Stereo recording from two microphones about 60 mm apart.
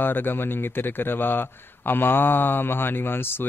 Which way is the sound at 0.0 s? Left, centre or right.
Left.